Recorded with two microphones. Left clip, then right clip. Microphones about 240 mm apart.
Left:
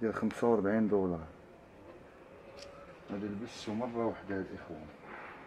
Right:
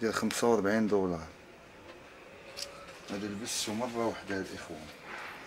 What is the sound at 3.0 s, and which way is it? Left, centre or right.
Speech, centre.